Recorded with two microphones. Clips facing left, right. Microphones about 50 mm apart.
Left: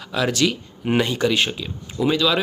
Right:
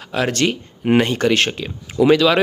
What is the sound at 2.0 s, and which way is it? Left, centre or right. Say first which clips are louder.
Speech: right 6 dB; right.